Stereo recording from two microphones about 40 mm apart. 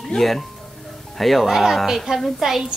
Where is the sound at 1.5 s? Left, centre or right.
Centre.